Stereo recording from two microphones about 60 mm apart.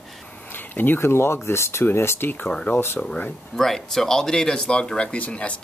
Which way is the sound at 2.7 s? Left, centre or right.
Left.